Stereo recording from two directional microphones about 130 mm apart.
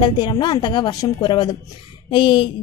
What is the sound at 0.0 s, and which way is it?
A woman's voice, 35° left (ahead or behind).